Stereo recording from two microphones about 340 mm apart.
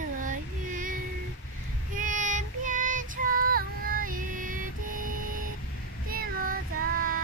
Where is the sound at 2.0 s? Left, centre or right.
Right.